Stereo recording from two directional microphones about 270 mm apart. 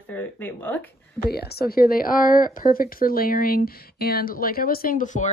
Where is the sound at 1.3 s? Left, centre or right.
Left.